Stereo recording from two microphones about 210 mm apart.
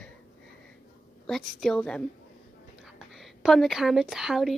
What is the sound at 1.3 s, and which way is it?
Speech, centre (ahead or behind).